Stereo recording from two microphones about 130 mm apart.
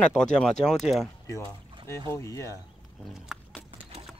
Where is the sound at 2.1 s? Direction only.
25° left (ahead or behind).